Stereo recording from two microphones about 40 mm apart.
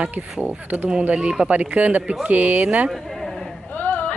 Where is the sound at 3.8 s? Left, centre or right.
Left.